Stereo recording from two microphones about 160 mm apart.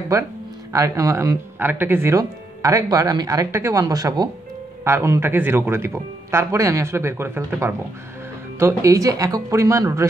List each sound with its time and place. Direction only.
0.1 s speech: 20° right (ahead or behind)